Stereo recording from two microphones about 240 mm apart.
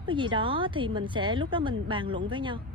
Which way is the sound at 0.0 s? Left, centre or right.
Centre.